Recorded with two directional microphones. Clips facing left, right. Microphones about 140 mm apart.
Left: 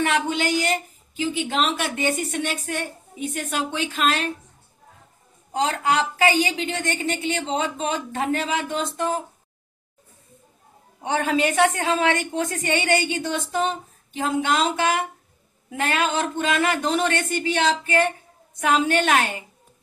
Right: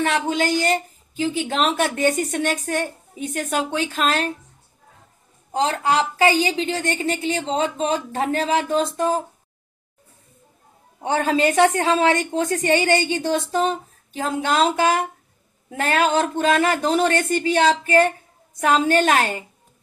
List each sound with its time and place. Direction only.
0.1 s a woman's voice: 35° right (ahead or behind)
5.5 s a woman's voice: 30° right (ahead or behind)
11.0 s a woman's voice: 30° right (ahead or behind)